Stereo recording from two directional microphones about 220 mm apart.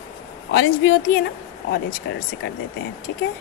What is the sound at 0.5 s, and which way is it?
A woman's voice, 55° left (ahead or behind).